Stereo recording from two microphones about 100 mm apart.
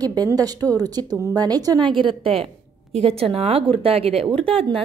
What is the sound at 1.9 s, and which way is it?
A woman's voice, 60° right (ahead or behind).